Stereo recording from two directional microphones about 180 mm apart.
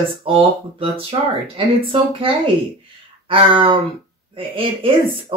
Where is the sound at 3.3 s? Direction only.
30° right (ahead or behind).